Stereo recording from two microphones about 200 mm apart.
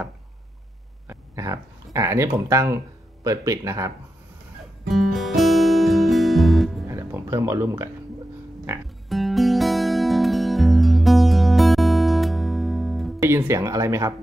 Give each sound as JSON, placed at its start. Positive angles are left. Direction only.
{"t": 1.0, "sound": "a sound", "side_deg": -15}
{"t": 3.3, "sound": "speech", "side_deg": -15}
{"t": 4.8, "sound": "music", "side_deg": 0}
{"t": 6.9, "sound": "music", "side_deg": -15}
{"t": 8.7, "sound": "speech", "side_deg": -10}
{"t": 9.1, "sound": "music", "side_deg": 0}
{"t": 13.2, "sound": "speech", "side_deg": -15}